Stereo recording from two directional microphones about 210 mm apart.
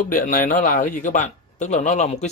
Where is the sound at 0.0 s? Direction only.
40° left (ahead or behind).